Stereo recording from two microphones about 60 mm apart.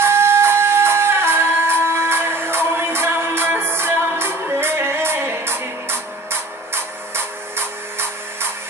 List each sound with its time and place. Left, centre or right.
0.0 s music: right